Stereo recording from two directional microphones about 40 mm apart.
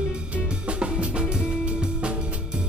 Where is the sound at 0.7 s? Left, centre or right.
Right.